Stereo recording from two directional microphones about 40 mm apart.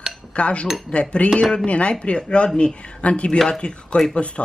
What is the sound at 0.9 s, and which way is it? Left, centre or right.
A woman's voice, left.